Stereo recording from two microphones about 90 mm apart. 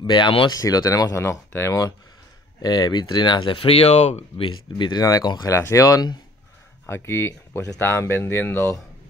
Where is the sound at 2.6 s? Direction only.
50° left (ahead or behind); by 3.8 s 80° left.